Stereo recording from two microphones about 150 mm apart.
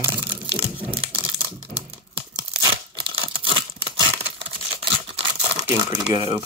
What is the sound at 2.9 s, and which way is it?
Tearing, 35° right (ahead or behind).